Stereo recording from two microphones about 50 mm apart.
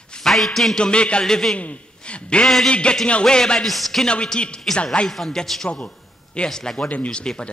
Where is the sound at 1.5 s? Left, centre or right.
Left.